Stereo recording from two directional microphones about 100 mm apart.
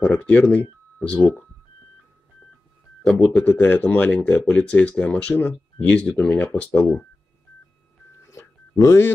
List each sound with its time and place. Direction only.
0.0 s speech: 15° left (ahead or behind)
3.1 s speech: 15° left (ahead or behind)
8.4 s a sound: 30° left (ahead or behind)